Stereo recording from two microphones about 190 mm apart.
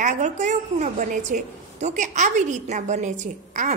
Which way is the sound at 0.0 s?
40° right (ahead or behind).